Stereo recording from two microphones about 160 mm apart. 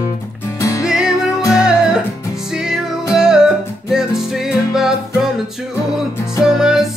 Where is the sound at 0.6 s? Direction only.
20° left (ahead or behind).